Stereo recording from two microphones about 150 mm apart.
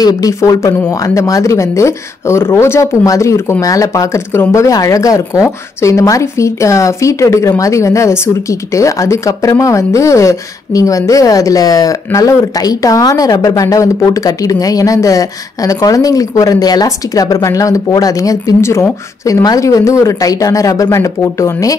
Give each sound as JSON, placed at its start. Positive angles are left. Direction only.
{"t": 0.0, "sound": "speech", "side_deg": 25}